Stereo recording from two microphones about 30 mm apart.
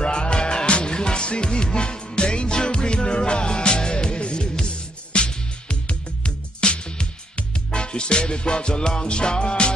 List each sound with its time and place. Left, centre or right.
0.0 s music: left